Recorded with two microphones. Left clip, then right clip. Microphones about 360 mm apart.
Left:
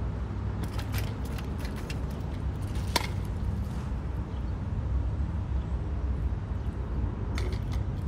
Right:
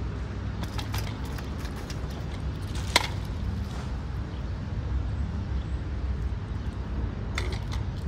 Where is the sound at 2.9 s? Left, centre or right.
Centre.